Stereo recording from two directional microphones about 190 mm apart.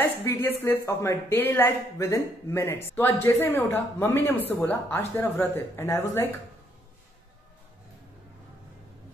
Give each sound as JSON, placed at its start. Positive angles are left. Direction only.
{"t": 0.0, "sound": "speech", "side_deg": 10}